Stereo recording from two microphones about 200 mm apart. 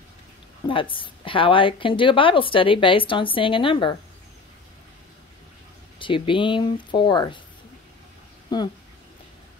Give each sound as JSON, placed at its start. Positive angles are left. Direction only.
{"t": 0.7, "sound": "a woman's voice", "side_deg": 25}
{"t": 5.9, "sound": "a woman's voice", "side_deg": 25}